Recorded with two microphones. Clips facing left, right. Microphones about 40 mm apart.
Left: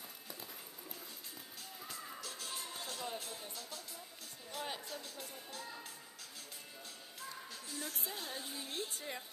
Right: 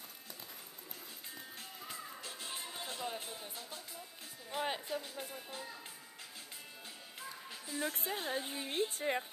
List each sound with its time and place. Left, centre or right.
1.8 s music: centre
4.5 s speech: right
7.6 s a woman's voice: right
8.9 s a woman's voice: right